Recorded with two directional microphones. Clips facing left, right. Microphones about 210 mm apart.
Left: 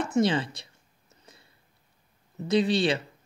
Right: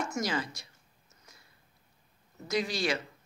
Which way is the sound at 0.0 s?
30° left (ahead or behind).